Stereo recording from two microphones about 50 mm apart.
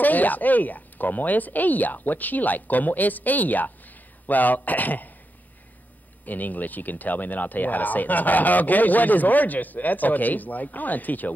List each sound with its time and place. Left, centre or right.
0.0 s speech: left
6.2 s speech: left